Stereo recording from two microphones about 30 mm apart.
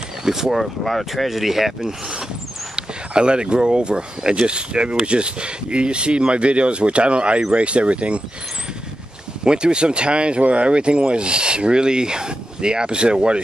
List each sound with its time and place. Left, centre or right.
0.2 s speech: centre
0.8 s speech: centre
1.9 s speech: right
2.7 s speech: right
9.4 s speech: right